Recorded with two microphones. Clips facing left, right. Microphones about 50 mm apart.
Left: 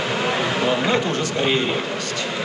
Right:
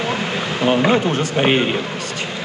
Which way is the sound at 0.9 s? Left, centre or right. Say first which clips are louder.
Right 3 dB; right.